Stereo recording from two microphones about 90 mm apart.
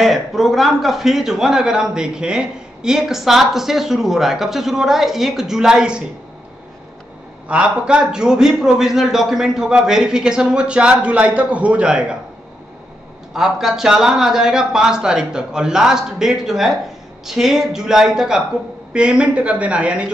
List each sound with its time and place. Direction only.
0.0 s a man's voice: centre (ahead or behind)
7.4 s a man's voice: 15° right (ahead or behind)
13.3 s a man's voice: 5° right (ahead or behind)